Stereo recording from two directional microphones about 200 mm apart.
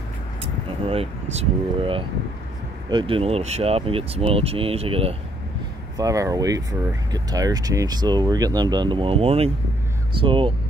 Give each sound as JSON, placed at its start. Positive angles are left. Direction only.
{"t": 0.4, "sound": "speech", "side_deg": -30}
{"t": 5.9, "sound": "speech", "side_deg": -15}